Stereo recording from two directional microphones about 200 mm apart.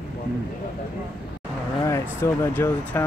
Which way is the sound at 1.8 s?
15° left (ahead or behind).